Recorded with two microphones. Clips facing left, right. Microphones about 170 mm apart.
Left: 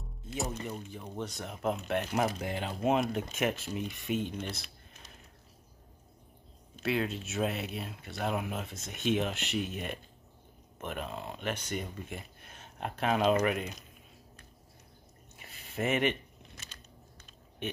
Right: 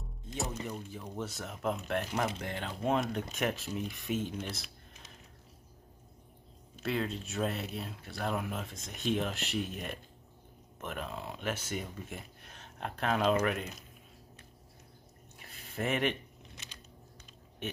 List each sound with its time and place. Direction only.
0.3 s speech: 5° left (ahead or behind)
6.8 s speech: 5° left (ahead or behind)
15.3 s a sound: centre (ahead or behind)